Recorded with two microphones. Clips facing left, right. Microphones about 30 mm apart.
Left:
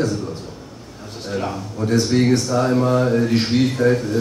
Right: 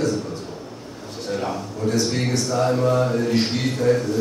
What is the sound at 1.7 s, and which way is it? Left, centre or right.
A man's voice, centre.